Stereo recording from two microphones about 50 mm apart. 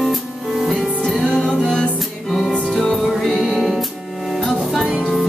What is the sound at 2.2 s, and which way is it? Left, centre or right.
Music, centre.